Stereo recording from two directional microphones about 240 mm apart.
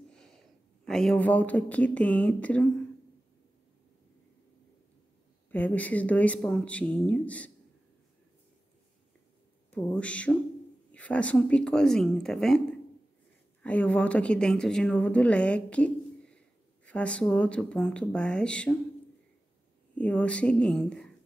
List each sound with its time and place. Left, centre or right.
0.1 s speech: centre
5.5 s speech: centre
9.7 s speech: centre
20.0 s speech: centre